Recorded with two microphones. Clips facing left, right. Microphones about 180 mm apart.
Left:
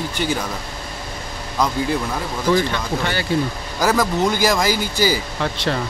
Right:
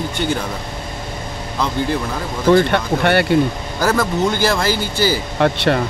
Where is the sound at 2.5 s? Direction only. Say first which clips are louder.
Right 6 dB; 60° right (ahead or behind).